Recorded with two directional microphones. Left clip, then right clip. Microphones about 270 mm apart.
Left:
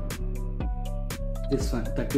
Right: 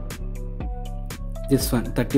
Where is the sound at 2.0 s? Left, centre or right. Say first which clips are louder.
Right 6 dB; right.